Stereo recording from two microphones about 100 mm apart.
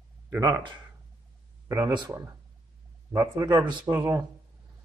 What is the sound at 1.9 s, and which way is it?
Speech, 50° right (ahead or behind).